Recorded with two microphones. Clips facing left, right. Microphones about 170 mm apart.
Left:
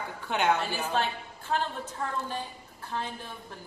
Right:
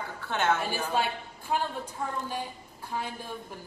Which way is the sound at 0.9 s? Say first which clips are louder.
Even; 10° right (ahead or behind).